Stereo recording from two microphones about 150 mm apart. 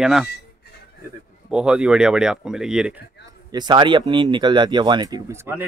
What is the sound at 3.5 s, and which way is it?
Speech, 30° right (ahead or behind).